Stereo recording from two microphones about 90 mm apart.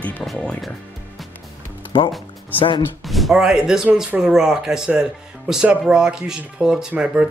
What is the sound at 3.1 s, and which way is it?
Speech, centre (ahead or behind).